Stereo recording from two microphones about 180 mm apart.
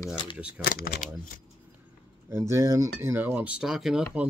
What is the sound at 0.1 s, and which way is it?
Speech, 30° left (ahead or behind).